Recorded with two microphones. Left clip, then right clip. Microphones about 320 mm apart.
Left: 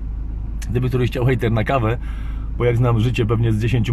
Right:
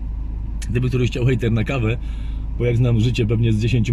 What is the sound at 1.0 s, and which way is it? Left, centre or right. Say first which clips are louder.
Speech: left 2 dB; centre.